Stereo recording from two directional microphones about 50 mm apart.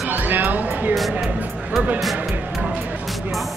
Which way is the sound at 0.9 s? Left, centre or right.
Centre.